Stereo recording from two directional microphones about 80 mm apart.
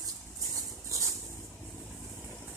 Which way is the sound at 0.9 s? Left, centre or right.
Right.